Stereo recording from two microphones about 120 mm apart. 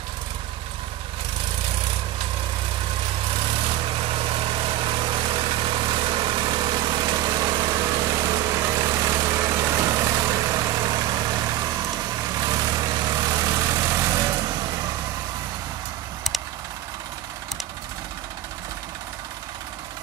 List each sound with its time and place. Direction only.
3.6 s vehicle: 50° right (ahead or behind); by 14.4 s 25° right (ahead or behind)